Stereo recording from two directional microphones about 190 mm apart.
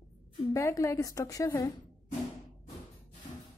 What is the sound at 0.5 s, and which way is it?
A woman's voice, 15° left (ahead or behind).